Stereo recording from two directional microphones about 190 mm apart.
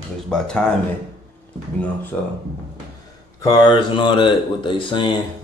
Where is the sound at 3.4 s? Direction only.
20° left (ahead or behind).